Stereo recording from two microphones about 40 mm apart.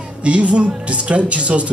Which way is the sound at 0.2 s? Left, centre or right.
Right.